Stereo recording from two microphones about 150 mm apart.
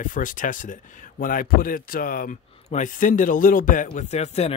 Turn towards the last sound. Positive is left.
turn(degrees=45)  # may be behind; listen again after turning